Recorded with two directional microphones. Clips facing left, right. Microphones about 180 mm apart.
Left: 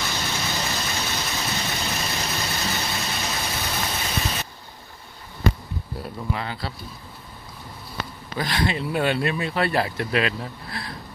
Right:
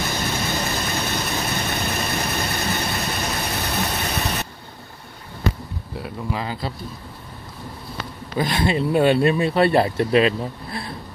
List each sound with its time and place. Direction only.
0.0 s vehicle: 50° right (ahead or behind)
6.4 s speech: 15° right (ahead or behind)
8.4 s speech: 25° right (ahead or behind)